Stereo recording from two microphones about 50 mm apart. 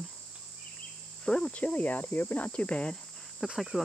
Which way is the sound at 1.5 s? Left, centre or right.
Left.